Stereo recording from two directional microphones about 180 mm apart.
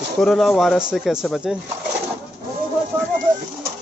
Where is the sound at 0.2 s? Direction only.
Centre (ahead or behind).